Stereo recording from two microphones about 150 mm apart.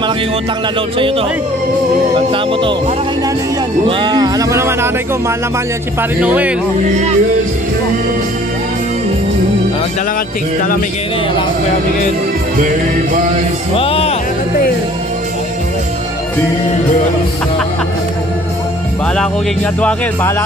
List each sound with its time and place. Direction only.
0.9 s speech: 35° right (ahead or behind)
2.1 s music: 35° right (ahead or behind)
3.8 s speech: 30° right (ahead or behind)
6.2 s speech: 10° right (ahead or behind)
6.8 s speech: 50° right (ahead or behind)
13.7 s speech: 40° left (ahead or behind)
19.1 s speech: 10° left (ahead or behind)